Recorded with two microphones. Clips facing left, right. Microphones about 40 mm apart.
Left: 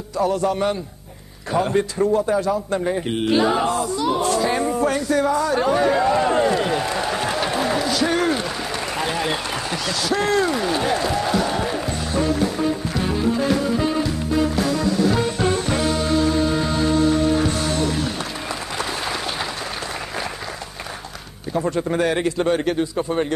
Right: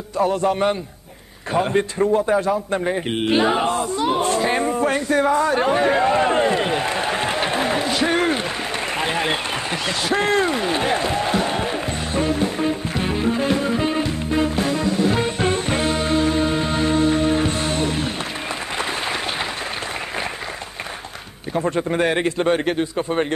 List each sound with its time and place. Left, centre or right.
0.2 s a man's voice: right
1.5 s a sound: right
18.8 s applause: right
21.5 s a man's voice: right